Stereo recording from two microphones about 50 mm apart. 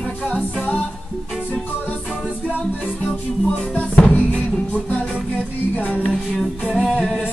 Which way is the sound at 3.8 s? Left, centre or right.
Left.